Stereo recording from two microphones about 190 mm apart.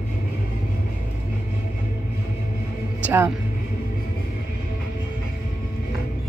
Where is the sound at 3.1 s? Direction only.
10° right (ahead or behind).